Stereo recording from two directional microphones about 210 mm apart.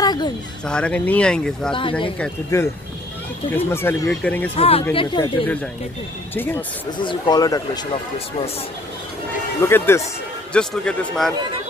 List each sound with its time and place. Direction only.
0.0 s music: 20° left (ahead or behind)
0.7 s speech: 5° left (ahead or behind)
1.7 s speech: 25° left (ahead or behind)
2.1 s speech: 10° left (ahead or behind)
4.6 s speech: 25° left (ahead or behind)
6.3 s speech: 10° left (ahead or behind)
7.0 s speech: 20° left (ahead or behind)
9.6 s speech: 10° left (ahead or behind)